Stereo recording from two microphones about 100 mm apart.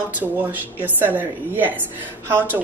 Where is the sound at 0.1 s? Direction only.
15° right (ahead or behind).